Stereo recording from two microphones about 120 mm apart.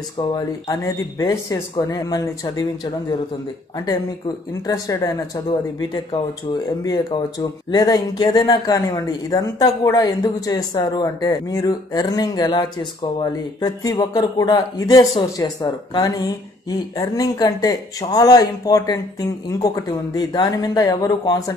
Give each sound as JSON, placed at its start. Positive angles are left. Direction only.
{"t": 0.7, "sound": "speech", "side_deg": 30}
{"t": 4.6, "sound": "speech", "side_deg": 30}
{"t": 6.8, "sound": "speech", "side_deg": 35}